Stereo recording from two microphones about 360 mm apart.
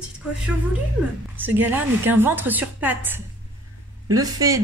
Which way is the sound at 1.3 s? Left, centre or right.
Centre.